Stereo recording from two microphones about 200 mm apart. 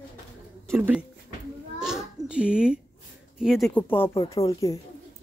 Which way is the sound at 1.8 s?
Centre (ahead or behind).